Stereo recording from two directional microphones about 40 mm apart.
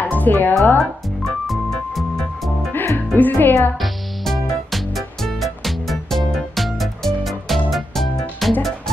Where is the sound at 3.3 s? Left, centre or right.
Left.